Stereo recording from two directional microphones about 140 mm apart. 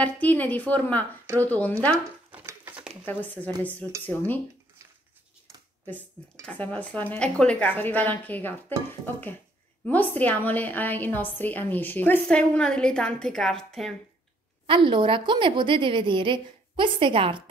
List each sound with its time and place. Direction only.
0.0 s a woman's voice: 10° left (ahead or behind)
2.3 s a sound: 15° right (ahead or behind)
3.1 s a woman's voice: 10° left (ahead or behind)
6.4 s a woman's voice: 10° left (ahead or behind)
14.7 s a woman's voice: 35° right (ahead or behind)